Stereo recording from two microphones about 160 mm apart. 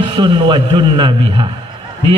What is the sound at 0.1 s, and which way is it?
A man's voice, 30° right (ahead or behind).